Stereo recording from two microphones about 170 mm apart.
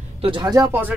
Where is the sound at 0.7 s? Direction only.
10° right (ahead or behind).